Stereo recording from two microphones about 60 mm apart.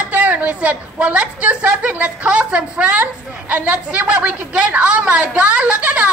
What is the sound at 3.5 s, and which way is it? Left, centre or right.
A woman's voice, right.